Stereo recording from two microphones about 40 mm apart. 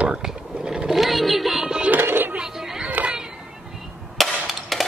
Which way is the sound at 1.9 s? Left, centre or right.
Right.